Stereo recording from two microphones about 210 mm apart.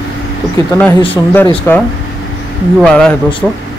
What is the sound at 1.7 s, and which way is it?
Speech, 10° left (ahead or behind).